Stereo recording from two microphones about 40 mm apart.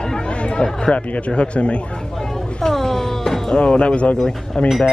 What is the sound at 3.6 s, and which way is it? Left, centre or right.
Speech, left.